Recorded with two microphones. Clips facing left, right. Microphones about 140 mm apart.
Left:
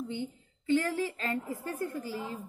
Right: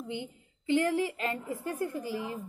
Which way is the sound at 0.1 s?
15° right (ahead or behind).